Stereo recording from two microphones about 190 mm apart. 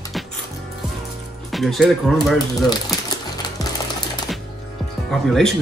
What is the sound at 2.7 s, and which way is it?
Music, 20° left (ahead or behind).